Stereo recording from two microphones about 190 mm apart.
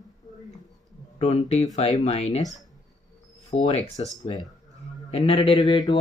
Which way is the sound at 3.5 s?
35° left (ahead or behind).